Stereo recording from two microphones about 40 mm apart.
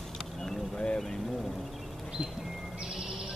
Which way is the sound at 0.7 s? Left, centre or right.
Left.